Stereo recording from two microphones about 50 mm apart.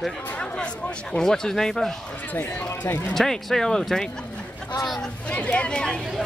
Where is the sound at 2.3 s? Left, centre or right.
Left.